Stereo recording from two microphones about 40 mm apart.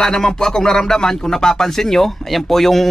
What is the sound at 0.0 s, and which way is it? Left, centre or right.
Speech, centre.